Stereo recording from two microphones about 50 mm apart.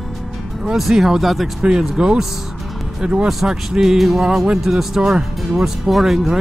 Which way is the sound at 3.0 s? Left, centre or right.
Right.